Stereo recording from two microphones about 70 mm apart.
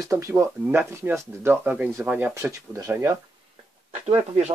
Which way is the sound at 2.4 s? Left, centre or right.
Right.